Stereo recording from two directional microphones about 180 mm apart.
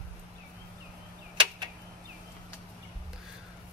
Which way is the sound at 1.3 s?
25° right (ahead or behind).